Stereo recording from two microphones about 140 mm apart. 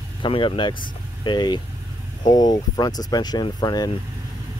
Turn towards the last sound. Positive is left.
turn(degrees=30)  # may be behind; listen again after turning